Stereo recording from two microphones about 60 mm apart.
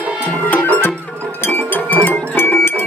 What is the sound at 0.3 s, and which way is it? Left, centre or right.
Music, left.